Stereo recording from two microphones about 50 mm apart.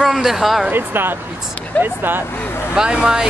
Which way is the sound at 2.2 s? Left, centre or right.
Left.